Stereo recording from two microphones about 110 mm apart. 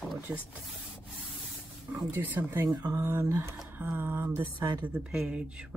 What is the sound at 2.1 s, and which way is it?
Speech, 15° right (ahead or behind).